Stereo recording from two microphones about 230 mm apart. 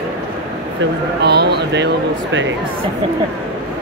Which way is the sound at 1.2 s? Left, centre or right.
Right.